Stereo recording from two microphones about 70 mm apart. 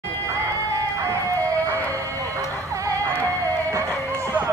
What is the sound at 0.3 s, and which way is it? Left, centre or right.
Music, right.